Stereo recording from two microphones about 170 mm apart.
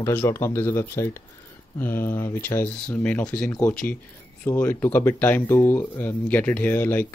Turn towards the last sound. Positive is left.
turn(degrees=10)  # may be behind; listen again after turning